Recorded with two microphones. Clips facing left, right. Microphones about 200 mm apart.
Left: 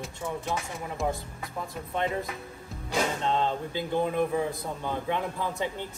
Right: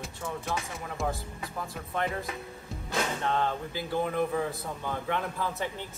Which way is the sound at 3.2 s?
20° left (ahead or behind).